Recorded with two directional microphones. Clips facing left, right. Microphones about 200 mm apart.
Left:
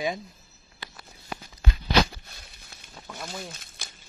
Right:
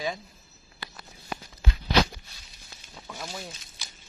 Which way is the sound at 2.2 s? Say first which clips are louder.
Left 2 dB; 55° left (ahead or behind).